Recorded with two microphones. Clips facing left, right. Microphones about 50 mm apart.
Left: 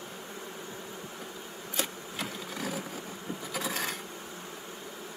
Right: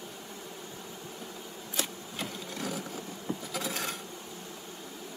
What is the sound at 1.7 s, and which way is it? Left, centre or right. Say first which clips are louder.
Insect: left 1 dB; centre.